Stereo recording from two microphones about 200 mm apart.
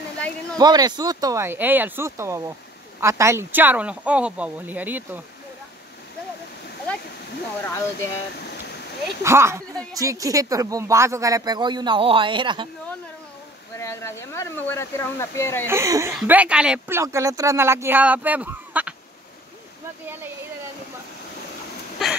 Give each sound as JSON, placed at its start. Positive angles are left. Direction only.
{"t": 0.6, "sound": "speech", "side_deg": -20}
{"t": 7.6, "sound": "speech", "side_deg": 15}
{"t": 9.2, "sound": "speech", "side_deg": -15}
{"t": 13.7, "sound": "speech", "side_deg": 15}
{"t": 15.6, "sound": "speech", "side_deg": -15}